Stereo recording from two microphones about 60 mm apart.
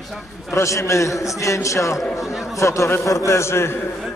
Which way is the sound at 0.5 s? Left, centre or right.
Left.